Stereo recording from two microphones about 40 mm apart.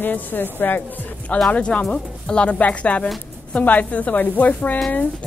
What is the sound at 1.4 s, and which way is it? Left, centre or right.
Speech, left.